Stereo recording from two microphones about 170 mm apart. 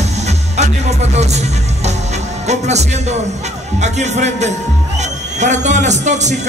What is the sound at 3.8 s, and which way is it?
Speech, 40° right (ahead or behind).